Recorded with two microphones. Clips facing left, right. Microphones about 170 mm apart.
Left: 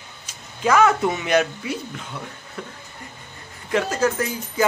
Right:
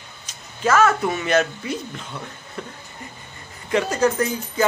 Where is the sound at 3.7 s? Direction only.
Centre (ahead or behind).